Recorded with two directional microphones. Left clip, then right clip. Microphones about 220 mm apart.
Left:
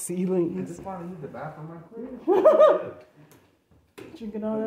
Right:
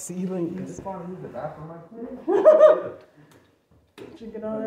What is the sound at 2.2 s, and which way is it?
Speech, 25° left (ahead or behind).